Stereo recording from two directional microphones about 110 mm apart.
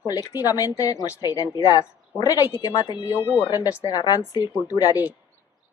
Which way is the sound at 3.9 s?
35° left (ahead or behind).